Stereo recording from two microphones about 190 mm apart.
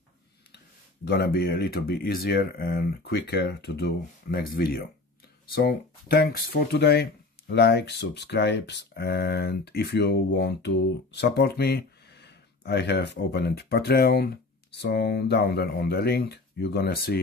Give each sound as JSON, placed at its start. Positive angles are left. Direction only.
{"t": 1.0, "sound": "speech", "side_deg": 55}